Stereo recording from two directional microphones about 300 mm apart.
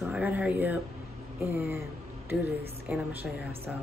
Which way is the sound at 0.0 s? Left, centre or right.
Centre.